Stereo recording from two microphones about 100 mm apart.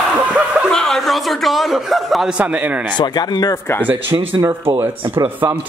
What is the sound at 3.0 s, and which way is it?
Speech, 45° left (ahead or behind).